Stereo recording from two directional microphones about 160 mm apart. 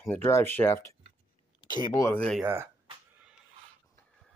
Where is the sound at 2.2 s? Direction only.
5° left (ahead or behind).